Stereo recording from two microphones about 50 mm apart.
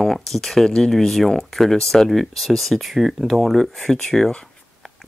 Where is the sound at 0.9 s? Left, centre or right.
Centre.